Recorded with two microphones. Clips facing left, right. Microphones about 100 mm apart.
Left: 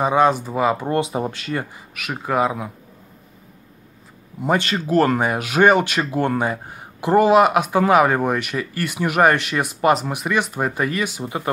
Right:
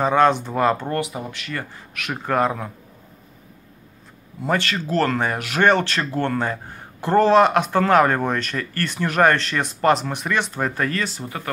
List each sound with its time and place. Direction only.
0.0 s speech: 10° left (ahead or behind)
0.8 s speech: 25° left (ahead or behind)
1.2 s speech: 35° left (ahead or behind)
2.0 s speech: 5° left (ahead or behind)
4.4 s speech: 15° left (ahead or behind)